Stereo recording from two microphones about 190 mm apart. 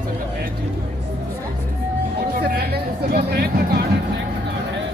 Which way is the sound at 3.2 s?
60° right (ahead or behind).